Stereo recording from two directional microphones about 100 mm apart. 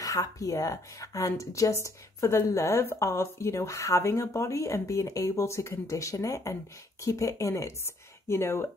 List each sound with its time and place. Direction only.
0.0 s a woman's voice: 35° left (ahead or behind)